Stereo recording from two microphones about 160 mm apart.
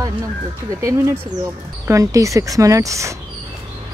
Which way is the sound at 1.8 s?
20° right (ahead or behind).